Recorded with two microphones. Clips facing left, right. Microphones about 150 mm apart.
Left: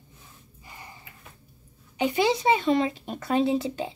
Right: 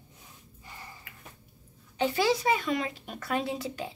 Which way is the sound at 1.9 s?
15° left (ahead or behind).